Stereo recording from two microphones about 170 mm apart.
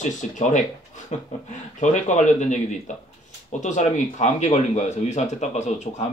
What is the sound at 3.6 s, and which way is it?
Speech, 45° left (ahead or behind).